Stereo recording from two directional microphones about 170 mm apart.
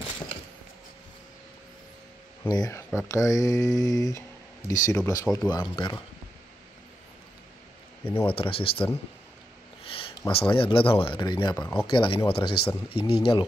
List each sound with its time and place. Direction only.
2.4 s speech: 20° left (ahead or behind)
8.0 s speech: 10° left (ahead or behind)
8.3 s speech: 30° left (ahead or behind)
9.8 s a sound: 30° left (ahead or behind)
10.3 s speech: 30° left (ahead or behind)
11.5 s speech: 10° left (ahead or behind)
11.9 s speech: 30° left (ahead or behind)